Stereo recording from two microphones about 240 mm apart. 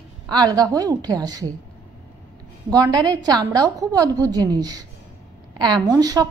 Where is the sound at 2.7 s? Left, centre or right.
Centre.